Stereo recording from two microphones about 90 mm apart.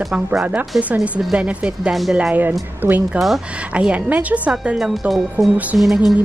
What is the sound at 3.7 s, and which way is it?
A woman's voice, 15° right (ahead or behind).